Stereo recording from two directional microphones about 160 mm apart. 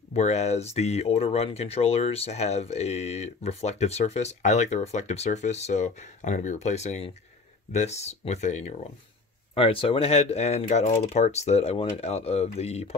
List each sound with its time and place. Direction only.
0.1 s speech: 45° left (ahead or behind)
9.6 s speech: 35° left (ahead or behind)